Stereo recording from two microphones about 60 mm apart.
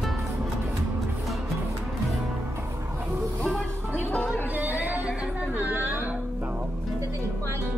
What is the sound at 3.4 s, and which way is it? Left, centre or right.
Music, centre.